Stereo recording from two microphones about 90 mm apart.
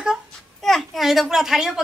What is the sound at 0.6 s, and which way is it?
Speech, centre (ahead or behind).